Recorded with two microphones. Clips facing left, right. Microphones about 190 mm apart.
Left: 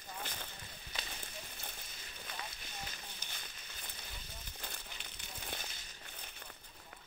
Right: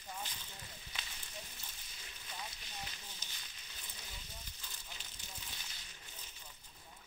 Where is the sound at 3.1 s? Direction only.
55° left (ahead or behind).